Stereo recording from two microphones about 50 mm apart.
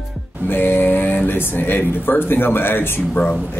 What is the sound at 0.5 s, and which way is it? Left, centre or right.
A man's voice, left.